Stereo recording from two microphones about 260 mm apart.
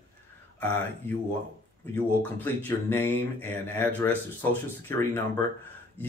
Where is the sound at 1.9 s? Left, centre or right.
Centre.